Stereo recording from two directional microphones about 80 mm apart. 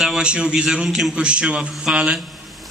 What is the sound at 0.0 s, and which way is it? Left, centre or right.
A man's voice, centre.